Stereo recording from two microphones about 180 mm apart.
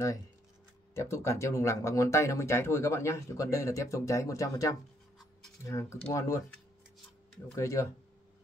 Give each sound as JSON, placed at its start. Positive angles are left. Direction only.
{"t": 0.9, "sound": "speech", "side_deg": 15}
{"t": 7.5, "sound": "speech", "side_deg": 15}